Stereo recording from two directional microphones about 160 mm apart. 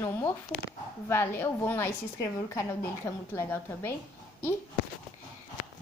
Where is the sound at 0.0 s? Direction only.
20° left (ahead or behind).